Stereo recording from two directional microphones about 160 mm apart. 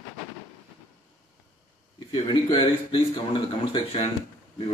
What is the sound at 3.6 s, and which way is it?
Speech, 35° left (ahead or behind).